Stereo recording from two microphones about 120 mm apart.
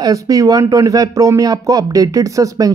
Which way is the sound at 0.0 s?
30° right (ahead or behind).